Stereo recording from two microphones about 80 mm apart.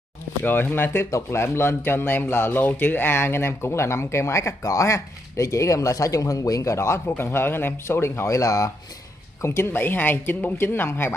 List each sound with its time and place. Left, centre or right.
0.4 s speech: left